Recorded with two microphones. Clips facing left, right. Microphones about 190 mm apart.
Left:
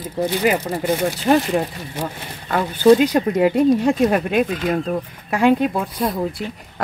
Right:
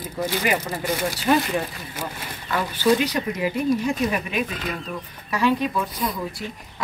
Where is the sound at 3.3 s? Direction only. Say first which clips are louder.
Left 7 dB; 75° left (ahead or behind).